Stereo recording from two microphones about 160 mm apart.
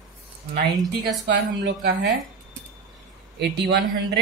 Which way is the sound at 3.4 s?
90° right.